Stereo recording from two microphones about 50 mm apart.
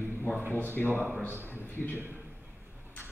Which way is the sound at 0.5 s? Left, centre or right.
Left.